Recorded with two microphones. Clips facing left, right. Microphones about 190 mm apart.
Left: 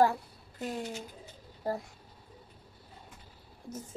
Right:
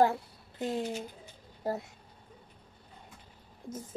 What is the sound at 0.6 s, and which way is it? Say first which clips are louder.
Speech: right 4 dB; 25° right (ahead or behind).